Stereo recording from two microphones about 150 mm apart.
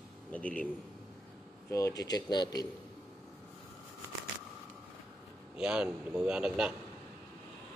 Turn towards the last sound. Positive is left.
turn(degrees=-5)  # may be behind; listen again after turning